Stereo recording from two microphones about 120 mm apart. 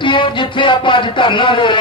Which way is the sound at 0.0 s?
45° left (ahead or behind).